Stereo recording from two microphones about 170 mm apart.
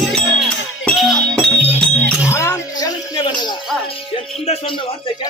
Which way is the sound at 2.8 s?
25° left (ahead or behind).